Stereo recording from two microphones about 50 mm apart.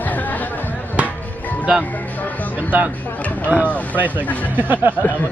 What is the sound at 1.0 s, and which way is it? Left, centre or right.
Music, left.